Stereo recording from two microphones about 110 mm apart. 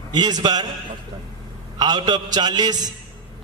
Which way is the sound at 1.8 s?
40° right (ahead or behind).